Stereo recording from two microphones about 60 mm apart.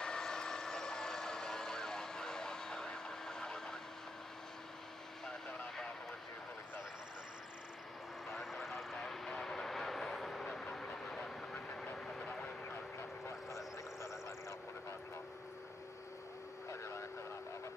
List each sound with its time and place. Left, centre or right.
0.0 s vehicle: centre
8.3 s vehicle: centre
11.7 s train: centre
12.1 s vehicle: centre